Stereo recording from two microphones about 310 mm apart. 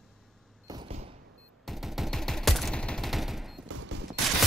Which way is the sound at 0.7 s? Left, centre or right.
Centre.